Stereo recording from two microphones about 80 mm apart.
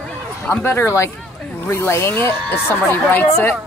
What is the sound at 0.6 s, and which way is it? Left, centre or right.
Speech, left.